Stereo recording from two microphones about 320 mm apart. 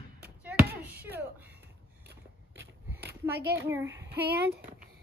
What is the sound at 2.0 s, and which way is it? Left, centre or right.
Biting, right.